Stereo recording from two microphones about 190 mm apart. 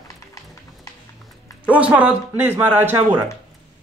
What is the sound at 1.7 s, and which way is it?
Speech, 5° right (ahead or behind).